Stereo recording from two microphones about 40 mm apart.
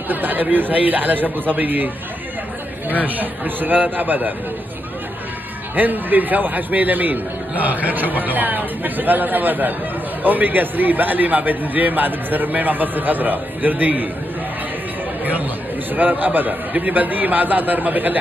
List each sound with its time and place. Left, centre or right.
0.1 s a man's voice: right
3.2 s a man's voice: right
5.8 s a man's voice: right
15.9 s a man's voice: right